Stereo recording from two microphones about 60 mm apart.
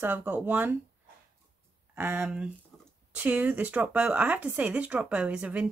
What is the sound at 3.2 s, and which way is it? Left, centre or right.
Speech, right.